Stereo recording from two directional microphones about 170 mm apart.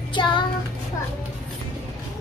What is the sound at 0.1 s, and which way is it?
Child singing, 25° left (ahead or behind).